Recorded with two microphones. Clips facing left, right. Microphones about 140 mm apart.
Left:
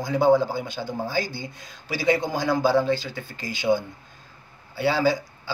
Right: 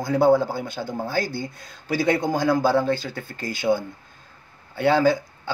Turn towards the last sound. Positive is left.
turn(degrees=-55)  # may be behind; listen again after turning